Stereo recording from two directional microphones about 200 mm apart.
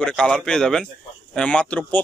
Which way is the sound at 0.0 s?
Centre (ahead or behind).